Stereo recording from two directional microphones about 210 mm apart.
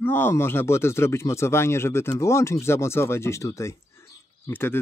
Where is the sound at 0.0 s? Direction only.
10° left (ahead or behind).